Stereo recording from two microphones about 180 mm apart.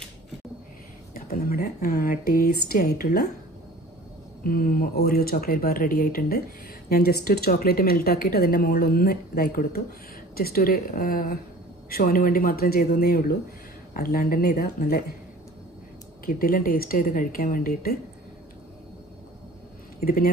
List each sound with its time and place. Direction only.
1.1 s a woman's voice: 55° left (ahead or behind)
4.4 s a woman's voice: 55° left (ahead or behind)
16.3 s a woman's voice: 50° left (ahead or behind)